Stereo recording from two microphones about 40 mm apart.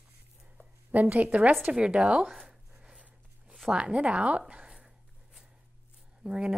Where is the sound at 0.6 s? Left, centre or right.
Left.